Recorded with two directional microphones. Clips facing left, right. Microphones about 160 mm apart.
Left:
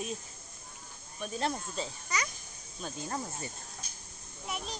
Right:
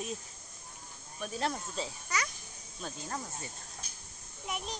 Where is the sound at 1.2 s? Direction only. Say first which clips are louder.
Left 1 dB; centre (ahead or behind).